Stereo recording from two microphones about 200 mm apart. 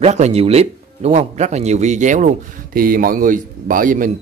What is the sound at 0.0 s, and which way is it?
Speech, 35° right (ahead or behind).